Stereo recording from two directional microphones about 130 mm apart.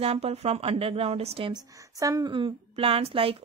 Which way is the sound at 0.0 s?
50° right (ahead or behind).